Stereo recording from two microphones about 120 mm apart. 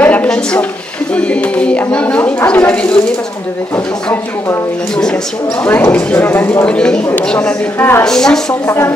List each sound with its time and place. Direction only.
0.0 s a sound: 15° left (ahead or behind)
1.1 s a woman's voice: 10° left (ahead or behind)
3.7 s speech: 25° left (ahead or behind)
5.6 s a woman's voice: 15° left (ahead or behind)
8.0 s a woman's voice: 5° left (ahead or behind)
8.6 s speech: 20° left (ahead or behind)